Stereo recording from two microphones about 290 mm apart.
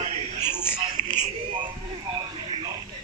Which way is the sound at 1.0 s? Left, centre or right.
Right.